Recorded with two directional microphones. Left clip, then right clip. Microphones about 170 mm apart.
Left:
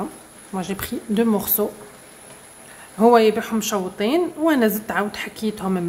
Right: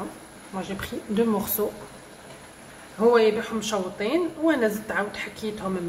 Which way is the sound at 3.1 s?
65° left (ahead or behind).